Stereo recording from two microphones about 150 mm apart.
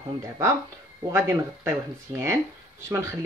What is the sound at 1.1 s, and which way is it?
Speech, 15° right (ahead or behind).